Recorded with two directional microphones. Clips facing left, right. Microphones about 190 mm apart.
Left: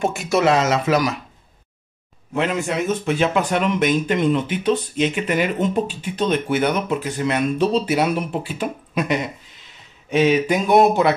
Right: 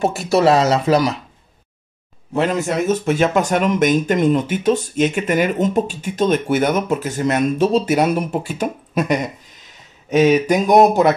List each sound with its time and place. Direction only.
0.0 s speech: 35° right (ahead or behind)
2.3 s speech: 40° right (ahead or behind)